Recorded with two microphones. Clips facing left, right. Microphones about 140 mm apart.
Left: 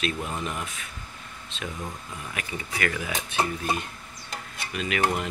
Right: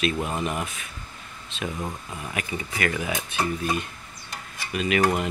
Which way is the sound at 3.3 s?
30° left (ahead or behind).